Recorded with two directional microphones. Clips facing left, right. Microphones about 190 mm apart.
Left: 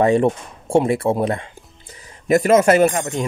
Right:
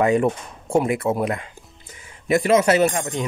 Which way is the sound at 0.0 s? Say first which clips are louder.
Left 3 dB; 30° left (ahead or behind).